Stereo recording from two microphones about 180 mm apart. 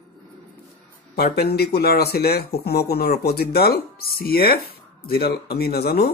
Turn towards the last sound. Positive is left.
turn(degrees=60)  # may be behind; listen again after turning